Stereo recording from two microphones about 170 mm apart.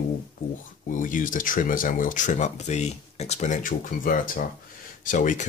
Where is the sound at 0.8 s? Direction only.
50° left (ahead or behind).